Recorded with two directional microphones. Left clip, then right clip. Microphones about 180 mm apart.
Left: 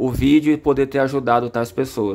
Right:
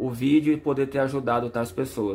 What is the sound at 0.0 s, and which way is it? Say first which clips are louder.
Speech: left 6 dB; 35° left (ahead or behind).